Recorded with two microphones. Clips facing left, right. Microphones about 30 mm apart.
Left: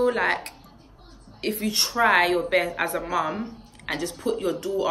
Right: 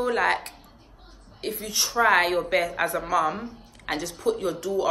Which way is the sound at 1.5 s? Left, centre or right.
Left.